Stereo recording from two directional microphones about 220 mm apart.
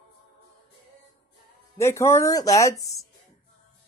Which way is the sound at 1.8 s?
10° left (ahead or behind).